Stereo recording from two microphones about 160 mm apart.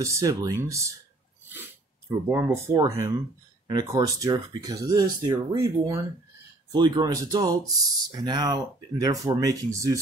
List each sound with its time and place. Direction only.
0.0 s speech: 20° right (ahead or behind)
2.0 s speech: 15° right (ahead or behind)